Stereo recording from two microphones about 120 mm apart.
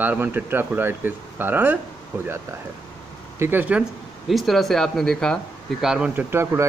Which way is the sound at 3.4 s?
15° right (ahead or behind).